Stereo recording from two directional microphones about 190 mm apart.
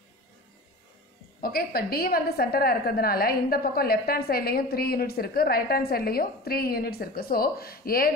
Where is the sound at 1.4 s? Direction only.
50° left (ahead or behind).